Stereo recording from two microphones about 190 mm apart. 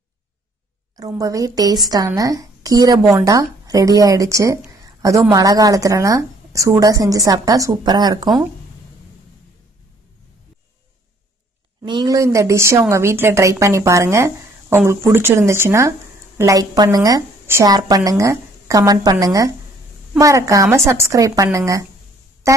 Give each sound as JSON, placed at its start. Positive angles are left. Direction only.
{"t": 0.9, "sound": "a woman's voice", "side_deg": -20}
{"t": 4.8, "sound": "a sound", "side_deg": -15}
{"t": 5.3, "sound": "a woman's voice", "side_deg": -20}
{"t": 11.8, "sound": "a woman's voice", "side_deg": -25}